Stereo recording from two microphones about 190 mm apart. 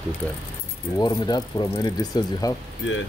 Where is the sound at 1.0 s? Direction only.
20° left (ahead or behind).